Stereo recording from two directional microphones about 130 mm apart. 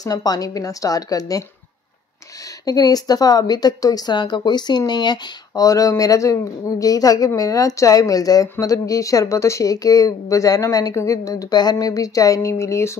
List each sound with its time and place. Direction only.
0.0 s speech: 30° left (ahead or behind)
2.6 s speech: 30° left (ahead or behind)